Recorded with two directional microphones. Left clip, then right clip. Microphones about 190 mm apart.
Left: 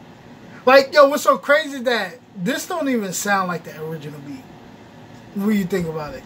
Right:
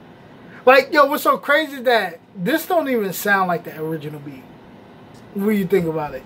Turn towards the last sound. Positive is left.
turn(degrees=-10)  # may be behind; listen again after turning